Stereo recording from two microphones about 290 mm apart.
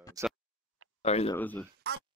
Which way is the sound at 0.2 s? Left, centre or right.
Centre.